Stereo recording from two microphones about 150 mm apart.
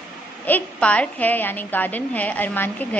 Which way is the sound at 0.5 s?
10° left (ahead or behind).